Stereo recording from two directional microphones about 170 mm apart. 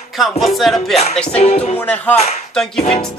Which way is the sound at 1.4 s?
40° left (ahead or behind).